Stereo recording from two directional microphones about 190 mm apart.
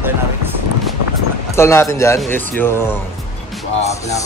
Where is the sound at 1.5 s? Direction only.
15° left (ahead or behind).